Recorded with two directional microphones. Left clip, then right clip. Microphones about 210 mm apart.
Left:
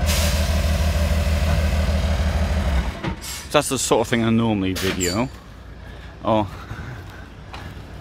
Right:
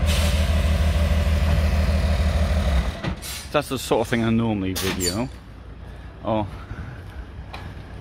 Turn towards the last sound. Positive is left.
turn(degrees=15)  # may be behind; listen again after turning